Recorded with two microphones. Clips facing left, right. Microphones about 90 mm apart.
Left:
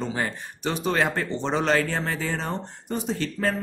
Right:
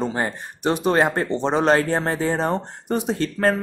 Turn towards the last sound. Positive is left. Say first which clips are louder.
# right 6 dB
turn(degrees=-50)  # may be behind; listen again after turning